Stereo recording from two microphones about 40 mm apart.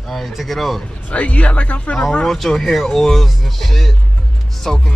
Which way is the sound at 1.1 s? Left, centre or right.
Left.